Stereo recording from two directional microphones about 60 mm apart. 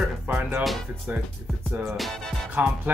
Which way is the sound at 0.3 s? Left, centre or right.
Right.